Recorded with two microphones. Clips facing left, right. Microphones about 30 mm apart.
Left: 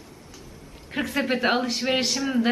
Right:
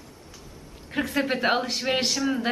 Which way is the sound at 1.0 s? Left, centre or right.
Centre.